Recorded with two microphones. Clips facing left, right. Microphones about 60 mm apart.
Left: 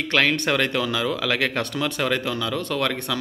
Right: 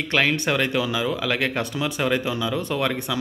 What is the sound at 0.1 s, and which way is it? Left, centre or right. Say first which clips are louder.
Speech: left 1 dB; centre.